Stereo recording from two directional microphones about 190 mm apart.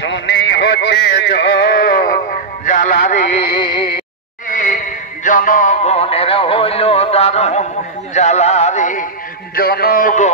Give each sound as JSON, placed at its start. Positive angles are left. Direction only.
{"t": 0.0, "sound": "a sound", "side_deg": 70}
{"t": 4.5, "sound": "music", "side_deg": 40}
{"t": 9.6, "sound": "a man's voice", "side_deg": 50}